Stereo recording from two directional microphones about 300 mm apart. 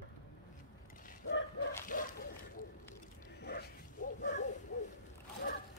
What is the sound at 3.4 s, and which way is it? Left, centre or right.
Zipper, left.